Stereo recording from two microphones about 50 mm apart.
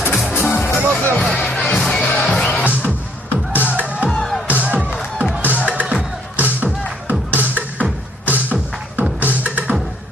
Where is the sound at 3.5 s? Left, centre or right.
Left.